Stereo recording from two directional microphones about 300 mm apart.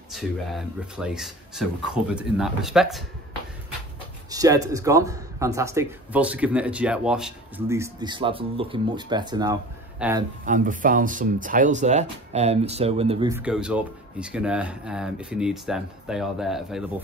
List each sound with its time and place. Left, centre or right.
0.1 s speech: centre
4.3 s speech: centre
10.4 s speech: right
13.3 s speech: centre